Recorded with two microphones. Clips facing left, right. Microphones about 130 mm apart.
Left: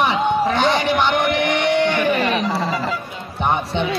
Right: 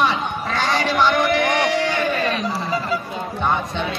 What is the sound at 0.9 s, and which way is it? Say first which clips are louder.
Speech: even; 20° left (ahead or behind).